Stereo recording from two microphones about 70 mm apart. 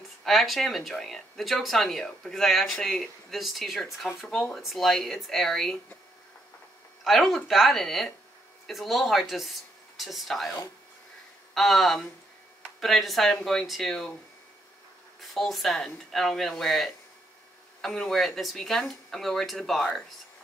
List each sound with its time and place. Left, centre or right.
0.2 s speech: centre
7.1 s speech: centre
15.1 s speech: centre